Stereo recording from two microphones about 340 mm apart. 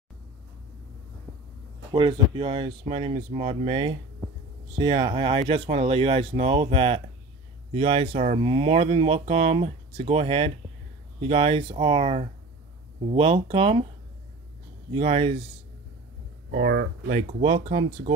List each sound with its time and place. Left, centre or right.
1.9 s speech: centre
15.0 s speech: centre
16.4 s speech: right